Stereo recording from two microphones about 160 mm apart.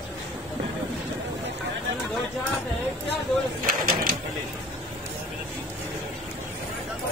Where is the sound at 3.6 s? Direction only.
60° right (ahead or behind).